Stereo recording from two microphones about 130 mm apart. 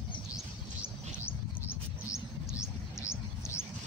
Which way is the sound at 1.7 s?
25° left (ahead or behind).